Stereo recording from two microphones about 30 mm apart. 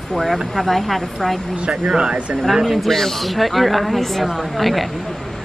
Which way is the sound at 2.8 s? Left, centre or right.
Centre.